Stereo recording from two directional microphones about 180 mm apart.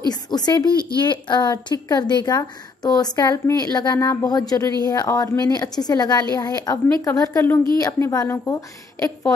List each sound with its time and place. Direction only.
0.1 s speech: 20° left (ahead or behind)